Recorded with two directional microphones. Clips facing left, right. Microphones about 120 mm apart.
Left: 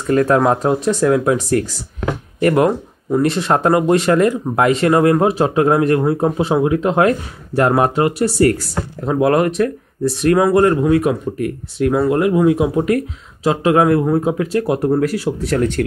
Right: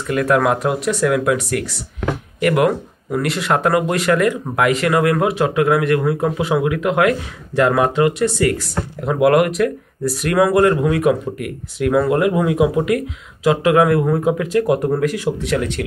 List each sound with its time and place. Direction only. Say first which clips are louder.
0.0 s speech: left 3 dB; 35° left (ahead or behind)